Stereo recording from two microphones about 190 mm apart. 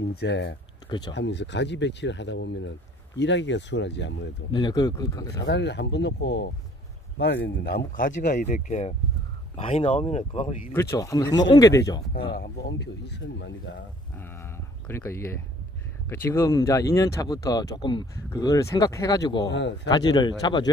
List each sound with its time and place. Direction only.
0.1 s speech: 60° left (ahead or behind)
0.8 s speech: 20° left (ahead or behind)
1.1 s speech: 65° left (ahead or behind)
4.5 s speech: 20° left (ahead or behind)
5.4 s speech: 65° left (ahead or behind); by 10.6 s 35° left (ahead or behind)
10.7 s speech: 15° left (ahead or behind)
12.4 s speech: 65° left (ahead or behind)
14.1 s speech: 10° left (ahead or behind)
19.5 s speech: 70° left (ahead or behind)
19.9 s speech: 20° left (ahead or behind)